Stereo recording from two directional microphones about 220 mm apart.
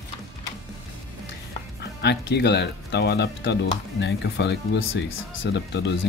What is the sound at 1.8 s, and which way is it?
Speech, 50° left (ahead or behind).